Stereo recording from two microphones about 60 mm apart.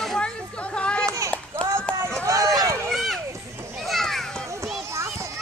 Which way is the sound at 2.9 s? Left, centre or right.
Centre.